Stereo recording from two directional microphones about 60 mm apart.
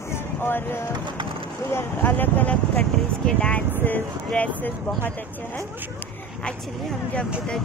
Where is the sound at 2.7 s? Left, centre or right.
Centre; by 5.1 s left.